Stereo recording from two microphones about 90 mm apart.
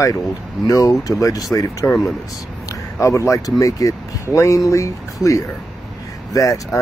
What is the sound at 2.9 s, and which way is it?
Speech, 30° left (ahead or behind).